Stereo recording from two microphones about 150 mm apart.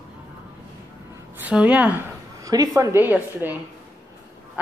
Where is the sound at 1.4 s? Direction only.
10° right (ahead or behind).